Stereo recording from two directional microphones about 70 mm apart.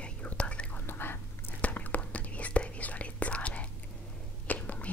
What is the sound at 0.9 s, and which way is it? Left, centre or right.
Whispering, left.